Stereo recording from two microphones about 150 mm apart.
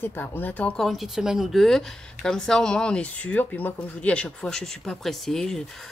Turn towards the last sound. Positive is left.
turn(degrees=0)  # may be behind; listen again after turning